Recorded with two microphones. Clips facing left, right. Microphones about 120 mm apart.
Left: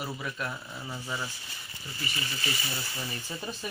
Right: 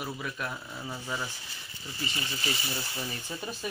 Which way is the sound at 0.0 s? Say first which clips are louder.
Even; 10° right (ahead or behind).